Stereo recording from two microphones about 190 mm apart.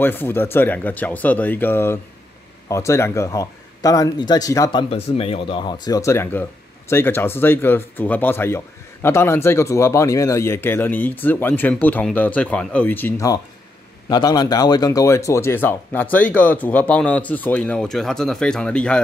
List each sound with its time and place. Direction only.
0.0 s speech: 10° left (ahead or behind)